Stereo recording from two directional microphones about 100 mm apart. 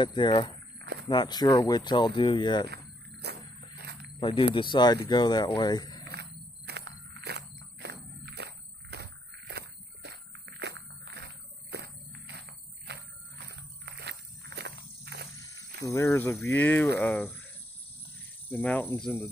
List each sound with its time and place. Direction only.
0.0 s speech: 55° left (ahead or behind)
4.2 s speech: 60° left (ahead or behind); by 6.0 s 45° left (ahead or behind)
15.4 s a sound: 30° left (ahead or behind)
16.4 s speech: 20° left (ahead or behind)
18.5 s speech: 15° left (ahead or behind)